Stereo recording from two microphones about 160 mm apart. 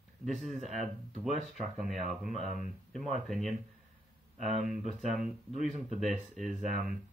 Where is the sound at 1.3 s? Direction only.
50° right (ahead or behind).